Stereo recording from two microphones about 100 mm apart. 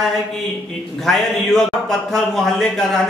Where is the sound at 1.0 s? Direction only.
5° left (ahead or behind).